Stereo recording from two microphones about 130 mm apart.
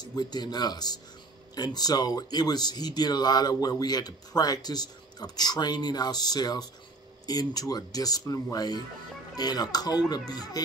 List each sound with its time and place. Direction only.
0.0 s speech: 30° left (ahead or behind)